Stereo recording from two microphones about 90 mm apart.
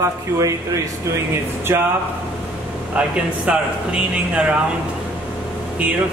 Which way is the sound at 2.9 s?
10° right (ahead or behind).